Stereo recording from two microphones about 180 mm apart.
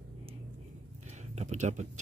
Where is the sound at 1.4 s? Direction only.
40° right (ahead or behind).